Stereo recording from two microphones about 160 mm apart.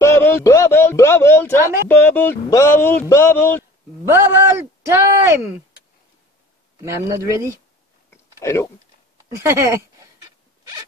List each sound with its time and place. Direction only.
0.0 s a sound: 15° left (ahead or behind)
1.9 s a man's voice: 15° left (ahead or behind)
4.1 s speech: 15° right (ahead or behind)
6.9 s a man's voice: 20° right (ahead or behind)
8.4 s speech: 15° left (ahead or behind)
9.4 s speech: 15° right (ahead or behind)